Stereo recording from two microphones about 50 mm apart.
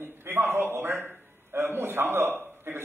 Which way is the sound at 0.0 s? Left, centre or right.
Right.